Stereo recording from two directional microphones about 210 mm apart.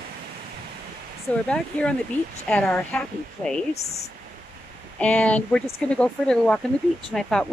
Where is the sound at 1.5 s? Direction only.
5° left (ahead or behind).